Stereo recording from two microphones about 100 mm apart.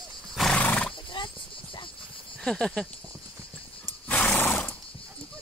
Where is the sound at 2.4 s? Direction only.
5° left (ahead or behind).